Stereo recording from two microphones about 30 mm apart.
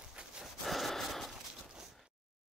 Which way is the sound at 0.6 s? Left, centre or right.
Centre.